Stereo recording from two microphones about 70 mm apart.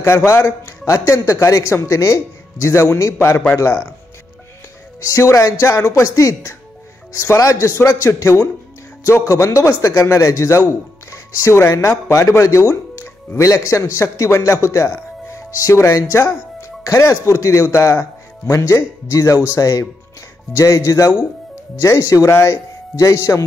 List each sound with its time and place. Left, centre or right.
0.0 s a man's voice: left
5.0 s a man's voice: left